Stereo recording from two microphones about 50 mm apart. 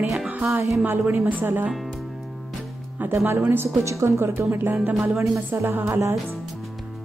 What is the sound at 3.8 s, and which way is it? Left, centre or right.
Speech, right.